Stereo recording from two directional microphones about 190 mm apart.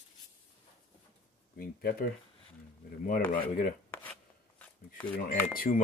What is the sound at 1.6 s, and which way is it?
Speech, 50° left (ahead or behind).